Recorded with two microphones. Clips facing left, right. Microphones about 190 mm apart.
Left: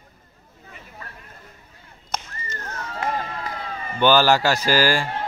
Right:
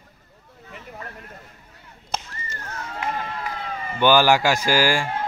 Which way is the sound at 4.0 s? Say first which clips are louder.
Even; 15° right (ahead or behind).